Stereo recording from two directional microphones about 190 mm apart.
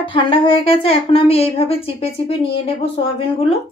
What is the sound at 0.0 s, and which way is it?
A woman's voice, 25° left (ahead or behind).